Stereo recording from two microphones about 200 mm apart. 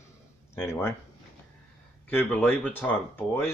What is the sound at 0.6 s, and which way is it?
Speech, 10° left (ahead or behind).